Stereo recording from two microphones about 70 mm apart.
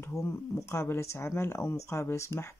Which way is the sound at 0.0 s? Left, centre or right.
Left.